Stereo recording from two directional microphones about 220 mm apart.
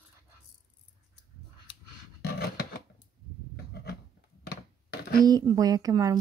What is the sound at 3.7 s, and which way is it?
Writing, 45° left (ahead or behind).